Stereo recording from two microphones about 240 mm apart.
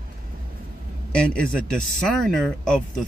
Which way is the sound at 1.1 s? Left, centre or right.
Centre.